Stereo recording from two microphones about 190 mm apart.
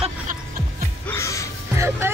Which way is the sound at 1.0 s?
15° left (ahead or behind).